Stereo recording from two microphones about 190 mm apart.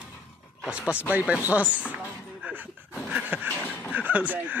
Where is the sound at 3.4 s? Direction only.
10° left (ahead or behind).